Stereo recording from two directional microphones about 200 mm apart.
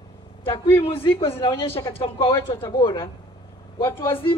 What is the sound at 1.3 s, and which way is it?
Speech, 15° left (ahead or behind).